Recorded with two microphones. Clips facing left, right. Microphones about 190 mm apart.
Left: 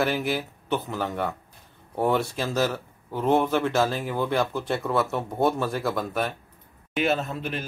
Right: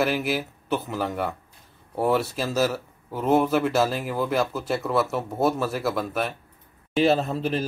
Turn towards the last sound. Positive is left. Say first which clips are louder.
# right 4 dB
turn(degrees=-35)  # may be behind; listen again after turning